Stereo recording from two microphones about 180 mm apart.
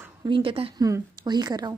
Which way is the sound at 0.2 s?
30° right (ahead or behind).